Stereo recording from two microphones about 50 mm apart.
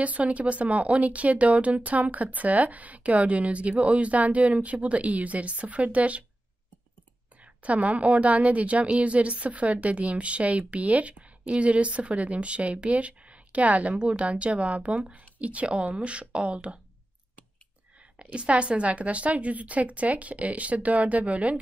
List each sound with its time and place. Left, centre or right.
0.0 s a woman's voice: right
7.6 s a woman's voice: right
18.2 s a woman's voice: right